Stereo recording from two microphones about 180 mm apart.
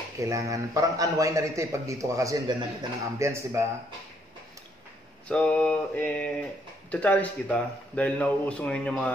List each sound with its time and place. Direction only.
0.2 s a man's voice: 15° right (ahead or behind)
5.3 s speech: 5° left (ahead or behind)